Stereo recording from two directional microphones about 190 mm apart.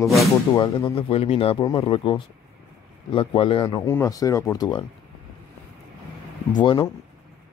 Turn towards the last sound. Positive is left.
turn(degrees=25)  # may be behind; listen again after turning